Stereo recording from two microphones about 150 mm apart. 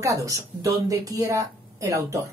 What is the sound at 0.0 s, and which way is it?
Speech, 20° right (ahead or behind).